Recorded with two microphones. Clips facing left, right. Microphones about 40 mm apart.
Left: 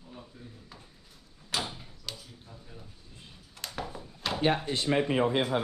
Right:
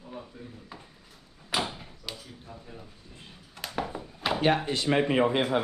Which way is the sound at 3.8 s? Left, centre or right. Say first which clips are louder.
Right 4 dB; right.